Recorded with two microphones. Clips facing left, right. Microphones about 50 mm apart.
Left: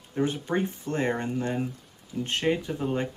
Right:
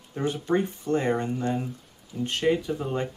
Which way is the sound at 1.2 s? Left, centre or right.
Left.